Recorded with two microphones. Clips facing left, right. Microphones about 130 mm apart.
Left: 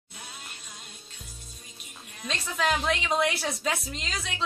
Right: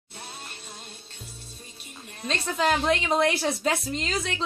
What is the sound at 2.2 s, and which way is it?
A woman's voice, 35° right (ahead or behind).